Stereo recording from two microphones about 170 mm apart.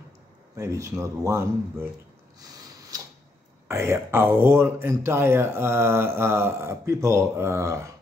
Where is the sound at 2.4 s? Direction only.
20° right (ahead or behind).